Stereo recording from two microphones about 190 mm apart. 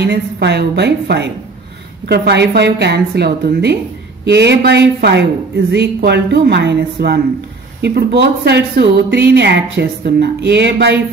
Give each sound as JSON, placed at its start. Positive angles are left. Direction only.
{"t": 0.0, "sound": "a woman's voice", "side_deg": -60}